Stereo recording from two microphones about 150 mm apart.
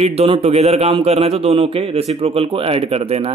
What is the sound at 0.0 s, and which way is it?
A man's voice, 40° right (ahead or behind).